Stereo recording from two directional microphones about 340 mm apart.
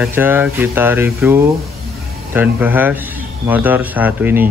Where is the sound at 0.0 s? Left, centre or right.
Centre.